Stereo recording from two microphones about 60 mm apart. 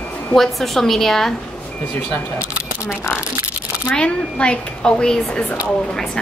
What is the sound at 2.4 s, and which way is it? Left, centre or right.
Camera, centre.